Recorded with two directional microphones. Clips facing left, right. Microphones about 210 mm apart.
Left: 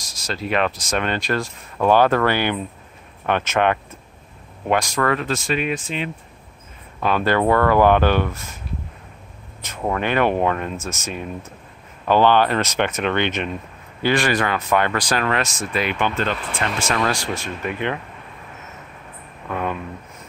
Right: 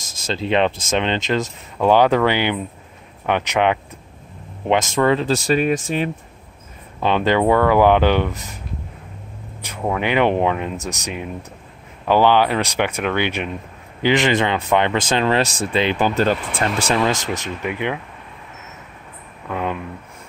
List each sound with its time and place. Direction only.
0.0 s speech: 25° right (ahead or behind); by 6.0 s 40° right (ahead or behind)
7.0 s speech: 25° right (ahead or behind)
9.6 s speech: 10° right (ahead or behind); by 16.3 s 35° right (ahead or behind)
17.0 s speech: 20° right (ahead or behind)
19.5 s speech: 15° right (ahead or behind)